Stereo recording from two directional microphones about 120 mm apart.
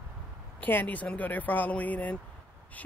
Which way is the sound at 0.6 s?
15° left (ahead or behind).